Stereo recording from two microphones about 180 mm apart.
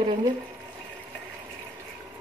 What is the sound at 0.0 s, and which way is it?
Speech, 25° right (ahead or behind).